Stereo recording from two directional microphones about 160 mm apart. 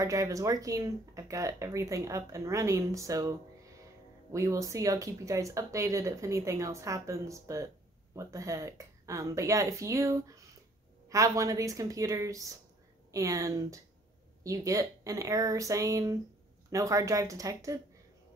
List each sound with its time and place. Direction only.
0.0 s speech: 20° right (ahead or behind)